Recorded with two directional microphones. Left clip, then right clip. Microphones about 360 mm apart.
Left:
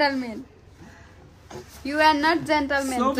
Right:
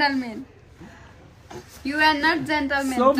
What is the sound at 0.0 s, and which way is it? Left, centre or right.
Speech, centre.